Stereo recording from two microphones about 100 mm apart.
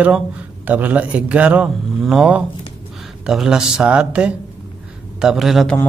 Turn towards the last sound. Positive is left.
turn(degrees=0)  # may be behind; listen again after turning